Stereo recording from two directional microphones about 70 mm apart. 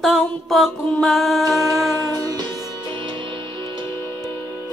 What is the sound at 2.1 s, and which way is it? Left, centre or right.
Music, right.